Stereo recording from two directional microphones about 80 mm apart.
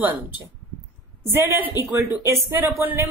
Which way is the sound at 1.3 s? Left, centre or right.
Right.